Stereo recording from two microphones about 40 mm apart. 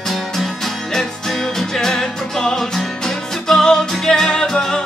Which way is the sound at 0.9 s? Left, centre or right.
Centre.